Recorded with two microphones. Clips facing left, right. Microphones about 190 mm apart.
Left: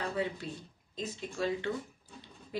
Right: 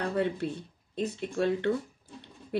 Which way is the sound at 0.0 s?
60° right (ahead or behind).